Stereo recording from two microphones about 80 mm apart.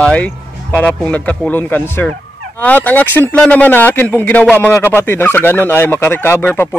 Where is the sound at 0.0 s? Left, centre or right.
Centre.